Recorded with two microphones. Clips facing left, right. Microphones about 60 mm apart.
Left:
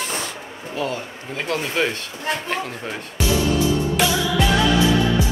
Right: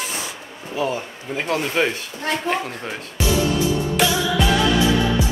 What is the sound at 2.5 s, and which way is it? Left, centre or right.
Speech, centre.